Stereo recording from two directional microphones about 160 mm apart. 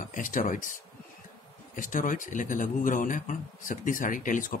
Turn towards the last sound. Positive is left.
turn(degrees=55)  # may be behind; listen again after turning